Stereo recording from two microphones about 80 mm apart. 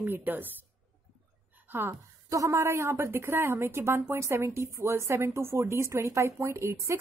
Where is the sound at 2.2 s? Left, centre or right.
Right.